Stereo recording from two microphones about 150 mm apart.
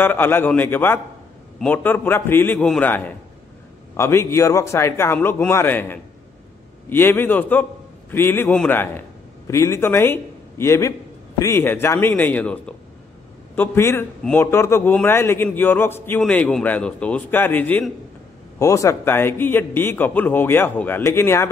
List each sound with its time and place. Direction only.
0.0 s a man's voice: 15° left (ahead or behind)